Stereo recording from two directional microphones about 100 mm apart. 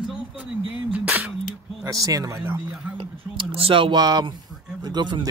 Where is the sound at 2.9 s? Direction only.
65° right (ahead or behind).